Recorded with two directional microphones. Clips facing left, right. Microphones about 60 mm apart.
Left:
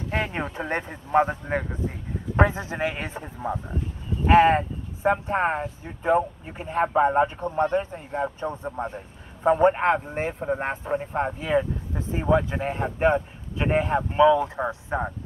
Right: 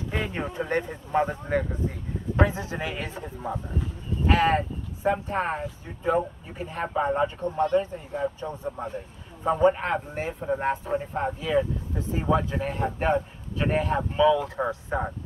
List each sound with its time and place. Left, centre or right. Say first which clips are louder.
0.1 s speech: left 4 dB; left
0.4 s a man's voice: right 1 dB; left